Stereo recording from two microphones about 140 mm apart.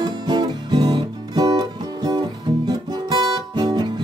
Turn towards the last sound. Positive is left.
turn(degrees=-30)  # may be behind; listen again after turning